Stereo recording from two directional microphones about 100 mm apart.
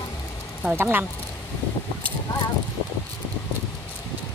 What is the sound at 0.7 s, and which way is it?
Speech, 20° right (ahead or behind).